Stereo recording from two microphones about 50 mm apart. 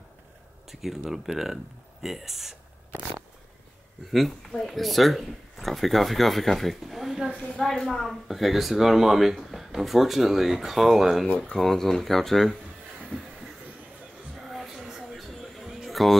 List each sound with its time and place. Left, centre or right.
0.7 s speech: centre
4.1 s speech: centre
11.2 s speech: left
11.5 s speech: centre
14.5 s a sound: centre
15.1 s music: centre